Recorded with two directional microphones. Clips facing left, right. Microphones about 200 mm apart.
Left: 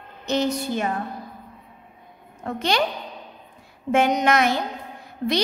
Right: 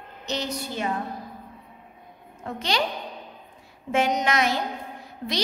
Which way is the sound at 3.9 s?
55° left (ahead or behind).